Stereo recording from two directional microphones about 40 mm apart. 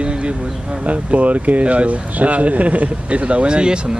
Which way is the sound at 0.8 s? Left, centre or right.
Right.